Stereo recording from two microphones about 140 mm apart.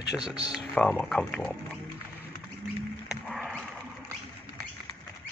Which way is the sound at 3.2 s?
Centre (ahead or behind).